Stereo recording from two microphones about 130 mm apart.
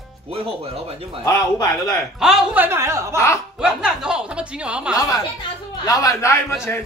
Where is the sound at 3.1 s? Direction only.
20° left (ahead or behind).